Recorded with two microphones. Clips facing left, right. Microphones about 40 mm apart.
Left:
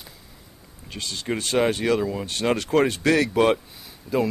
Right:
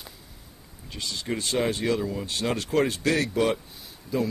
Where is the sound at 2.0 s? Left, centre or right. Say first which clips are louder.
Left 4 dB; left.